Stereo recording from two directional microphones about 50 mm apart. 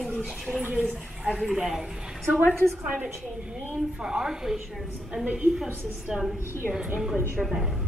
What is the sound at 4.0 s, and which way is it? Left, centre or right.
A woman's voice, centre.